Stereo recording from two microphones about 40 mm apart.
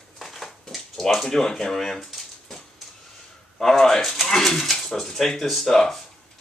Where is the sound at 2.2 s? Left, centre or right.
Centre.